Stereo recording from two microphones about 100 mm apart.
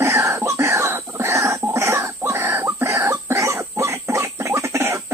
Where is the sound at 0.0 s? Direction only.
30° right (ahead or behind).